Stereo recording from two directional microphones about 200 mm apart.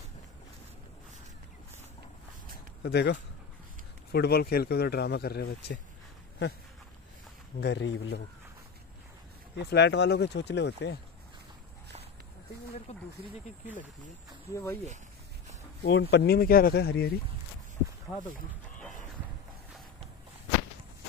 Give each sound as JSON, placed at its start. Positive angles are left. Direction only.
{"t": 2.8, "sound": "speech", "side_deg": 55}
{"t": 7.6, "sound": "speech", "side_deg": 65}
{"t": 9.6, "sound": "speech", "side_deg": 55}
{"t": 14.5, "sound": "speech", "side_deg": 15}
{"t": 15.8, "sound": "speech", "side_deg": 55}